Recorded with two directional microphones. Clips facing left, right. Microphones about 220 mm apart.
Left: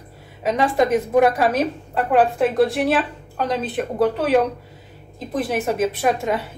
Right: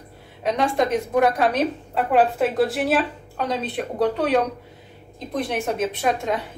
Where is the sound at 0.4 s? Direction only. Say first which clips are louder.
Left 2 dB; 5° left (ahead or behind).